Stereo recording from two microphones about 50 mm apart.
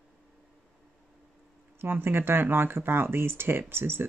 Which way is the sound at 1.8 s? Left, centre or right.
Right.